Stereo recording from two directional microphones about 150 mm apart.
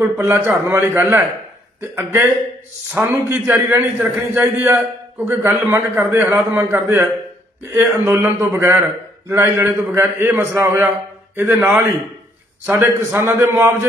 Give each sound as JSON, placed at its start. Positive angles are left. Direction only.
{"t": 0.0, "sound": "a man's voice", "side_deg": -15}
{"t": 2.9, "sound": "a man's voice", "side_deg": -15}